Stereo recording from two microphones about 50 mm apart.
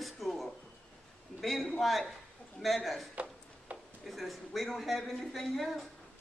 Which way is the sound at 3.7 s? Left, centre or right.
Right.